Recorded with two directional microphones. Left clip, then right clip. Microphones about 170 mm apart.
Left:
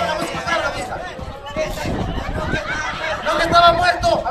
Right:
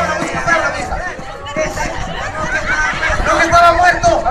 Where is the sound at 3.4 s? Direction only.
20° left (ahead or behind).